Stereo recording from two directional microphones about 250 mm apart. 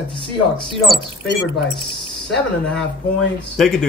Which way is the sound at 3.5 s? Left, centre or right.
Centre.